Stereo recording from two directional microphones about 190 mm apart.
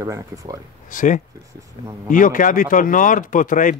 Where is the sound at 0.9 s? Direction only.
45° left (ahead or behind).